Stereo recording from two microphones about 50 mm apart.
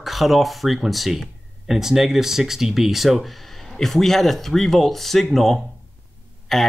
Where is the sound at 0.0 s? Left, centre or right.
Centre.